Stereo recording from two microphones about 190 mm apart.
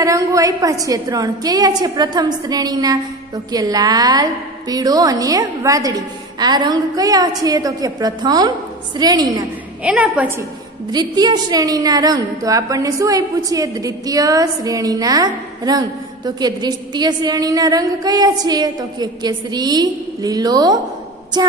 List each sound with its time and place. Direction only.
0.0 s a woman's voice: 15° right (ahead or behind)
9.8 s a woman's voice: 5° right (ahead or behind)
10.9 s a woman's voice: 20° right (ahead or behind)